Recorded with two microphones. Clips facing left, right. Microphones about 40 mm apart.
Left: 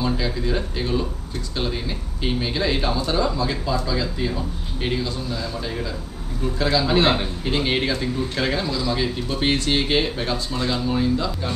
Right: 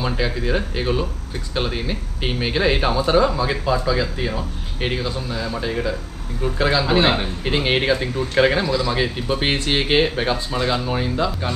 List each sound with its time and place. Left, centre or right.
0.0 s speech: right